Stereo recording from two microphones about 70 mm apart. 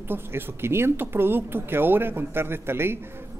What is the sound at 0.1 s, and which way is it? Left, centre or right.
A woman's voice, right.